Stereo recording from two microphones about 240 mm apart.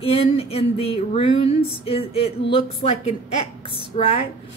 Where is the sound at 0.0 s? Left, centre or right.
Left.